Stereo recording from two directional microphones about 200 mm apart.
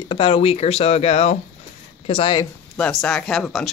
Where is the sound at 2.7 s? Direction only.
5° left (ahead or behind).